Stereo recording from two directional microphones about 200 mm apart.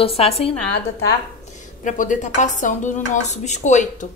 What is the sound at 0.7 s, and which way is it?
Speech, 55° left (ahead or behind).